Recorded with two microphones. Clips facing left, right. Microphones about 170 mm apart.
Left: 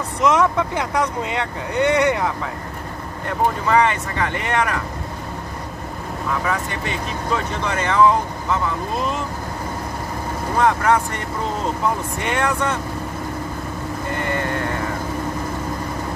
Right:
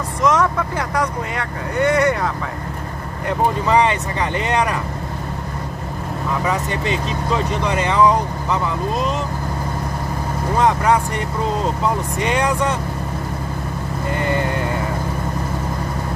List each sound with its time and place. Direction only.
0.2 s speech: 15° left (ahead or behind)
3.7 s speech: 20° right (ahead or behind)
6.4 s speech: 20° right (ahead or behind)
10.6 s speech: 20° right (ahead or behind)
12.2 s speech: 15° right (ahead or behind)